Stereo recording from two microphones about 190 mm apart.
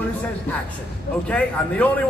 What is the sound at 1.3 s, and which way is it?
Speech, 5° left (ahead or behind).